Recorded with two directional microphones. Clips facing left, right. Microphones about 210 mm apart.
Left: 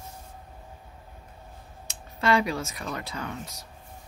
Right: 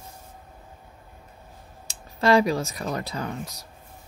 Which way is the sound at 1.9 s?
35° right (ahead or behind).